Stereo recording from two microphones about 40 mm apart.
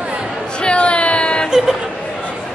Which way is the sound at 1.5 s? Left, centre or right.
Centre.